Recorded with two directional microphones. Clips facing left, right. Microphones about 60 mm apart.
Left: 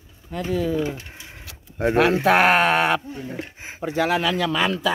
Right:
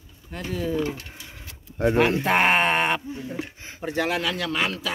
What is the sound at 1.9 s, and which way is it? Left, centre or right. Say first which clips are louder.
Speech: left 5 dB; left.